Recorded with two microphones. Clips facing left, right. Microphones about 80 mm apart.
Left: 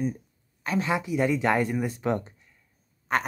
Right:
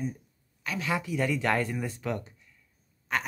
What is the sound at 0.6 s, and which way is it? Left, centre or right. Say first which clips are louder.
Speech: left 5 dB; left.